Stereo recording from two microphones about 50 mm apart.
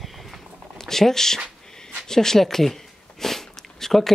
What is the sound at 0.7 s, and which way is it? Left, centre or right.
Speech, centre.